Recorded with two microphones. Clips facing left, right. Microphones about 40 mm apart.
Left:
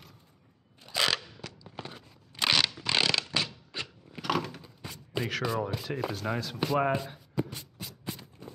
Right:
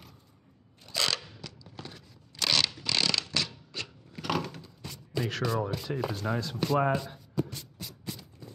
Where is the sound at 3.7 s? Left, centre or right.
Centre.